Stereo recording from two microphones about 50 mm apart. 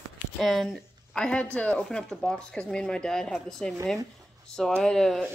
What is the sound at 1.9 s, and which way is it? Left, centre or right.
A woman's voice, centre.